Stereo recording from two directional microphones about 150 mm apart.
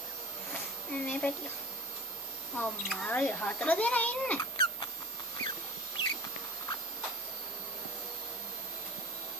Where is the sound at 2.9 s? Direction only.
10° left (ahead or behind).